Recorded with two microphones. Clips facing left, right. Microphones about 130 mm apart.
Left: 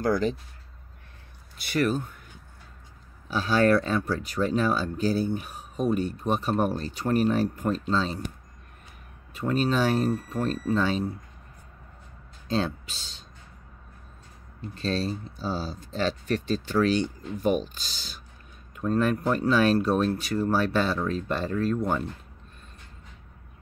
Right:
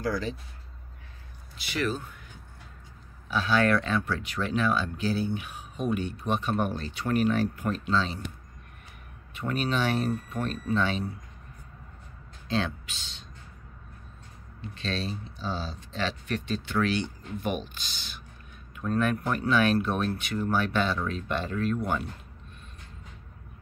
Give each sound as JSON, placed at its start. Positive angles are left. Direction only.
{"t": 0.0, "sound": "speech", "side_deg": 45}
{"t": 1.6, "sound": "speech", "side_deg": 50}
{"t": 3.3, "sound": "speech", "side_deg": 40}
{"t": 9.3, "sound": "speech", "side_deg": 35}
{"t": 12.4, "sound": "speech", "side_deg": 40}
{"t": 14.6, "sound": "speech", "side_deg": 40}